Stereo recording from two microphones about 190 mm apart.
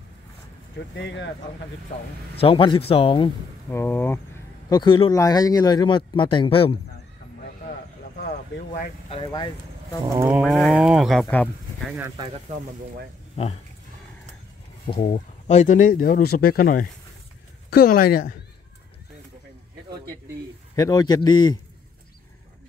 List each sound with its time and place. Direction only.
0.9 s speech: 65° left (ahead or behind)
2.4 s speech: 25° left (ahead or behind)
3.7 s speech: 10° left (ahead or behind)
4.6 s speech: 25° left (ahead or behind)
9.1 s speech: 25° left (ahead or behind)
10.0 s a sound: 10° right (ahead or behind)
10.4 s speech: centre (ahead or behind)
14.9 s speech: 35° left (ahead or behind)
20.7 s speech: 20° left (ahead or behind)